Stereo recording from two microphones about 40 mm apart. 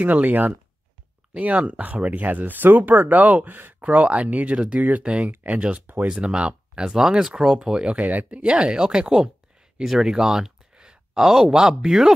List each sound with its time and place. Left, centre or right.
0.0 s speech: right
1.3 s speech: right
3.8 s speech: right
4.6 s speech: right
5.2 s speech: right
6.0 s speech: right
8.0 s speech: right
8.4 s speech: right
10.7 s a sound: right
11.1 s speech: centre